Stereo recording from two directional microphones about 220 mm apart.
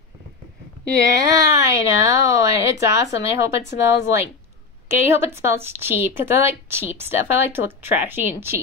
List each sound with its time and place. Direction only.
0.9 s speech: 15° right (ahead or behind)